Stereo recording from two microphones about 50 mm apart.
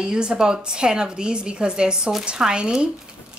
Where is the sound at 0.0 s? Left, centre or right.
Centre.